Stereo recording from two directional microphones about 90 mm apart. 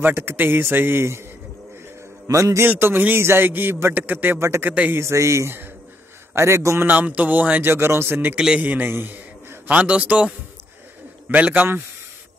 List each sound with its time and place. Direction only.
0.0 s a man's voice: 25° right (ahead or behind)
2.2 s speech: 35° right (ahead or behind)
2.7 s a man's voice: 20° right (ahead or behind)
5.0 s speech: 35° right (ahead or behind)
6.9 s a man's voice: 20° right (ahead or behind)
8.4 s a man's voice: 10° right (ahead or behind)
8.6 s a man's voice: 25° right (ahead or behind)